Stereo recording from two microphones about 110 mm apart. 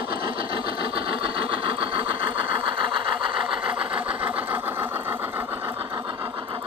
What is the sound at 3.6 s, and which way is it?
Vehicle, 10° right (ahead or behind).